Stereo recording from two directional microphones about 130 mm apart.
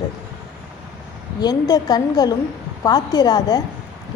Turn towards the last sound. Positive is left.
turn(degrees=30)  # may be behind; listen again after turning